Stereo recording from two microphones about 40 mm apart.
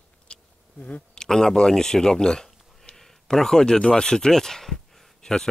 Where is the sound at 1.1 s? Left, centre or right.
Centre.